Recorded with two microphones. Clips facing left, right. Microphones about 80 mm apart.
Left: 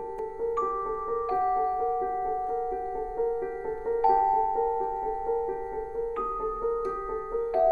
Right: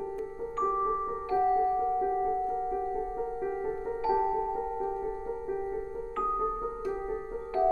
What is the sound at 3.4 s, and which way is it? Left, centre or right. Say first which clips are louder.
Music: left 1 dB; centre.